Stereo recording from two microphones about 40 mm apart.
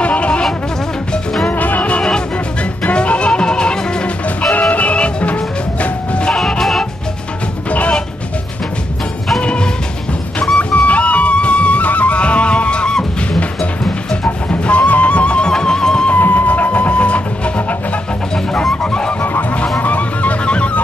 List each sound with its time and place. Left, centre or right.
0.0 s music: left
1.5 s music: left
2.0 s music: centre
4.4 s music: left
6.6 s music: centre
9.4 s music: left
14.2 s music: left
15.5 s music: centre
16.2 s music: left
18.3 s music: centre
18.8 s goose: left
19.8 s music: left